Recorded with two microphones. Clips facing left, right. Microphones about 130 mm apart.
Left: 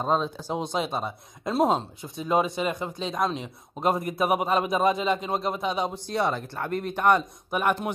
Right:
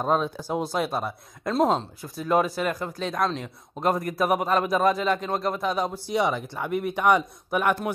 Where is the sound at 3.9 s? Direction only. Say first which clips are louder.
Right 1 dB; 25° left (ahead or behind).